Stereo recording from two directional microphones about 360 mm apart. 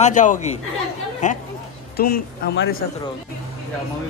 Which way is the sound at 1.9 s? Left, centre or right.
Left.